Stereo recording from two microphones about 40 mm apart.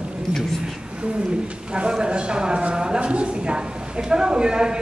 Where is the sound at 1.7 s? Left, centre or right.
Right.